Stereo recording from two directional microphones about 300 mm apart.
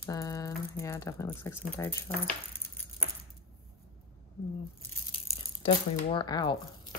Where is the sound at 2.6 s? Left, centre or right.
Left.